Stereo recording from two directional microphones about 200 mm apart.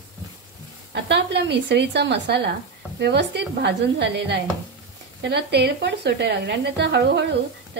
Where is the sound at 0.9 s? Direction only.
60° right (ahead or behind).